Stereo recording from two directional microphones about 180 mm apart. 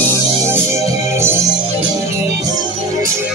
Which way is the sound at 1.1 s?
15° right (ahead or behind).